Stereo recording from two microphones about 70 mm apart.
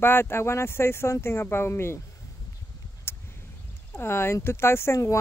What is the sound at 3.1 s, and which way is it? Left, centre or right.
Vehicle, left.